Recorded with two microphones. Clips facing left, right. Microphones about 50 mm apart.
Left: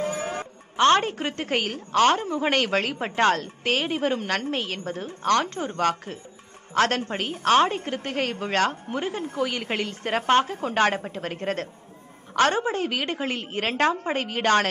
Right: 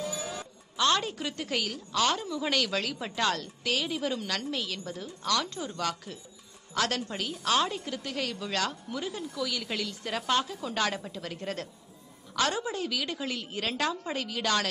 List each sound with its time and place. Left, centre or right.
0.0 s a woman's voice: left